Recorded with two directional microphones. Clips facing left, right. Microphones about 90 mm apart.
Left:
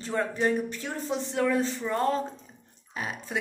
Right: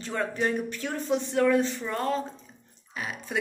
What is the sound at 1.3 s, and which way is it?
Speech, 25° left (ahead or behind).